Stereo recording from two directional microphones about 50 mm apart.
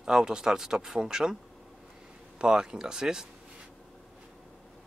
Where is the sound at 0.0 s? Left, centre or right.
Centre.